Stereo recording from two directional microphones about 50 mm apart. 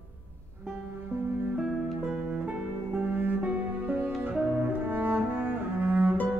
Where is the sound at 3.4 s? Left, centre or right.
Right.